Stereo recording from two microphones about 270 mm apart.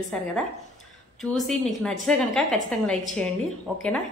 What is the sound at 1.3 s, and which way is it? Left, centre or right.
A woman's voice, centre.